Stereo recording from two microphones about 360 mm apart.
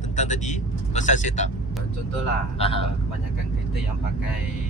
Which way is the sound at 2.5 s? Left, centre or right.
Centre.